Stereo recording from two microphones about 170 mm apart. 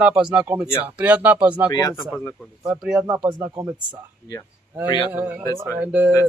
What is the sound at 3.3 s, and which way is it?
Speech, 25° right (ahead or behind).